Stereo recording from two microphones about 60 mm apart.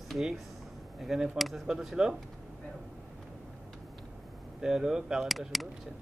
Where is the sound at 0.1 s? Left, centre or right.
Centre.